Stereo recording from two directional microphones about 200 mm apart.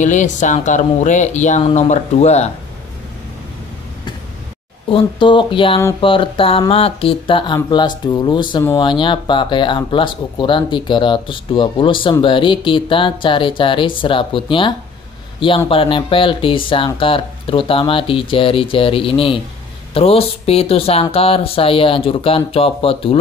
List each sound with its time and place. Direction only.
0.0 s speech: 40° left (ahead or behind)
4.8 s speech: 25° left (ahead or behind)